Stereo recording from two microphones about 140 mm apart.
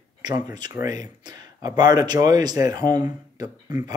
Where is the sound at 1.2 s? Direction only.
30° right (ahead or behind).